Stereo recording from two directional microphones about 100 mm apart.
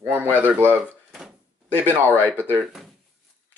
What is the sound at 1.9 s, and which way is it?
Speech, 20° right (ahead or behind).